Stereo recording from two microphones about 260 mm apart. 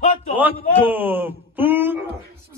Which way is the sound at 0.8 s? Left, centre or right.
Centre.